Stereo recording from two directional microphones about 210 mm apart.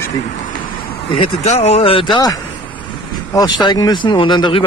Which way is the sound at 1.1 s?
30° left (ahead or behind).